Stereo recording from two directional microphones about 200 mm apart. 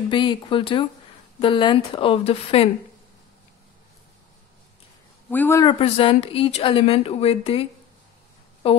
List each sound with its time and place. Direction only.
0.1 s speech: 25° left (ahead or behind)
5.3 s speech: 10° left (ahead or behind); by 7.6 s 30° left (ahead or behind)
8.6 s speech: 30° left (ahead or behind)